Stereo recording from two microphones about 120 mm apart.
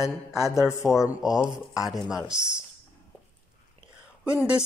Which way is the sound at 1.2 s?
5° right (ahead or behind).